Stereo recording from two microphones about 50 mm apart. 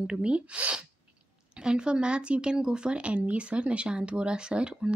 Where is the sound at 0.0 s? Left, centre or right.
Centre.